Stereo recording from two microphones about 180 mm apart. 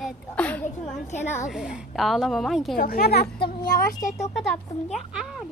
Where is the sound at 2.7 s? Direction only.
55° left (ahead or behind).